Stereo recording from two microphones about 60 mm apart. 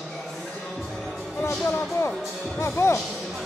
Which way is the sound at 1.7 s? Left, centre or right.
Left.